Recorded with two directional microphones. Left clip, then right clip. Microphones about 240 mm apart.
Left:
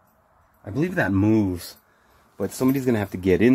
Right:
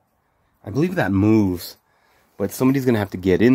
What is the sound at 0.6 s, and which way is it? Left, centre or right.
Speech, right.